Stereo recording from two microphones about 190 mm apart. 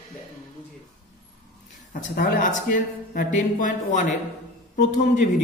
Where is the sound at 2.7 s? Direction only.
45° left (ahead or behind).